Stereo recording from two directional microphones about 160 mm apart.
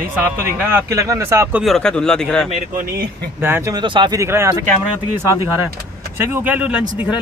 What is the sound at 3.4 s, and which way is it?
Speech, 15° right (ahead or behind).